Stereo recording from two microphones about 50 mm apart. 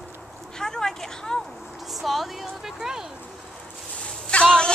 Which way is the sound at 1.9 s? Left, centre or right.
Centre.